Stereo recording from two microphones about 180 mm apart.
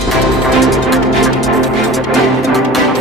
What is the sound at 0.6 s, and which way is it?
Music, centre (ahead or behind).